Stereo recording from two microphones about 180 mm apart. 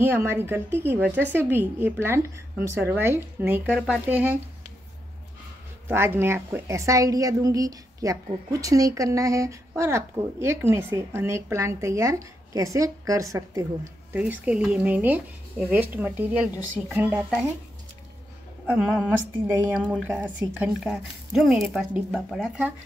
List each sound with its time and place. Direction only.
0.0 s speech: 15° right (ahead or behind)
5.9 s speech: 15° right (ahead or behind)
19.9 s speech: 10° right (ahead or behind)